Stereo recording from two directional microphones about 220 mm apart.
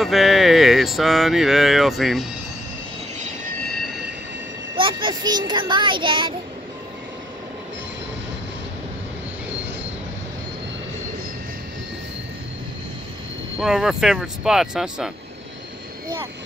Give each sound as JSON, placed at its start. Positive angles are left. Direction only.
{"t": 0.0, "sound": "a sound", "side_deg": 0}
{"t": 4.7, "sound": "a child's voice", "side_deg": -20}
{"t": 13.6, "sound": "speech", "side_deg": -5}